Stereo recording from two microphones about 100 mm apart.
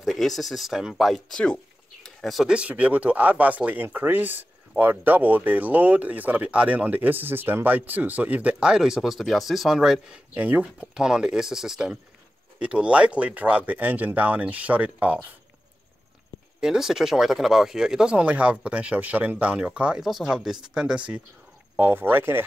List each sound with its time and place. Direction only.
0.0 s speech: centre (ahead or behind)
2.0 s a sound: centre (ahead or behind)
2.5 s speech: 15° right (ahead or behind)
16.6 s speech: 5° right (ahead or behind); by 22.4 s 20° right (ahead or behind)